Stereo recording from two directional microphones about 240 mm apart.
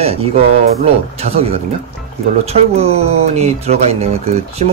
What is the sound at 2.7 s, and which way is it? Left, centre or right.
Speech, right.